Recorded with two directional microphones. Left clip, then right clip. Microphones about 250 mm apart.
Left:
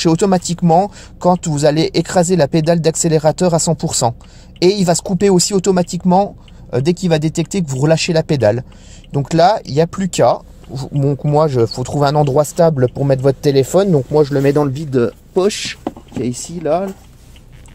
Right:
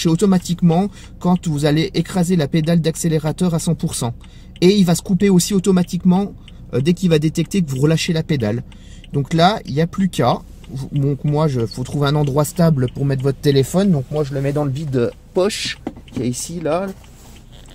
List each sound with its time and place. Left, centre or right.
0.0 s speech: left; by 16.9 s centre